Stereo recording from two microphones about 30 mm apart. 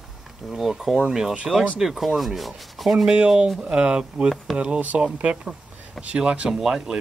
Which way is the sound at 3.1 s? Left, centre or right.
Right.